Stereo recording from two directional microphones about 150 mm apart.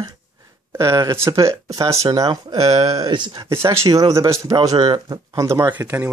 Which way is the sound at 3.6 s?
20° right (ahead or behind).